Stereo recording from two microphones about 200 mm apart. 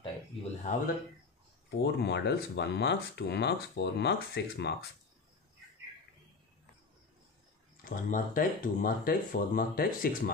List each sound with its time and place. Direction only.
0.0 s a sound: 30° left (ahead or behind)
1.7 s speech: 55° left (ahead or behind)
7.8 s speech: 45° left (ahead or behind)